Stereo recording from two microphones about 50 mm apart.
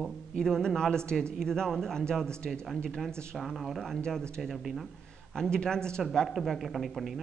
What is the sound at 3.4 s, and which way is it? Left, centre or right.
Speech, centre.